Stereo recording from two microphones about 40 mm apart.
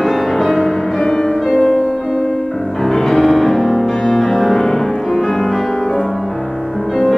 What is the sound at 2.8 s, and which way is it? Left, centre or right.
Music, centre.